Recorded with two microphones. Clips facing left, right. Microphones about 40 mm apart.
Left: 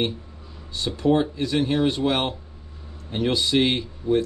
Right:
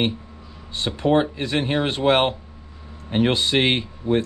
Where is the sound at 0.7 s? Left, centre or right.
Right.